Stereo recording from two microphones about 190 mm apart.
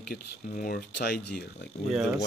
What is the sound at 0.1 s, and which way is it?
Speech, 50° left (ahead or behind).